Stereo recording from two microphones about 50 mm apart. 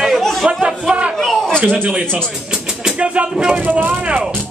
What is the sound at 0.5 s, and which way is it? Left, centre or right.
Chatter, centre.